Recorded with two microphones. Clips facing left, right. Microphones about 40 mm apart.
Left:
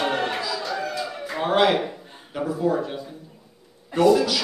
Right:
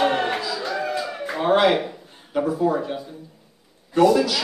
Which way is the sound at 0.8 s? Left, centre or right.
Centre.